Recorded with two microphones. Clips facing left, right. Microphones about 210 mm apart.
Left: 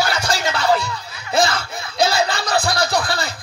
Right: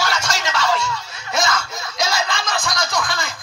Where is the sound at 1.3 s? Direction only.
30° left (ahead or behind).